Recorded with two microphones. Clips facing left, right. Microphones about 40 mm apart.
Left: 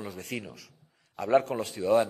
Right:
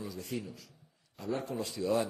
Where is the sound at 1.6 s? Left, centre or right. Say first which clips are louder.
Left 7 dB; left.